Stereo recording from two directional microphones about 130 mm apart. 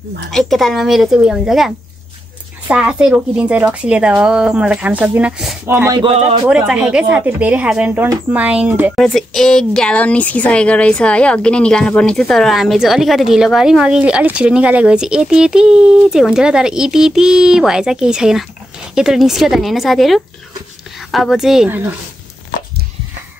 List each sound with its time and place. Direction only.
0.3 s a woman's voice: centre (ahead or behind)
2.7 s speech: 10° right (ahead or behind)
6.0 s speech: 50° right (ahead or behind)
6.4 s speech: 5° right (ahead or behind)
8.9 s a woman's voice: centre (ahead or behind)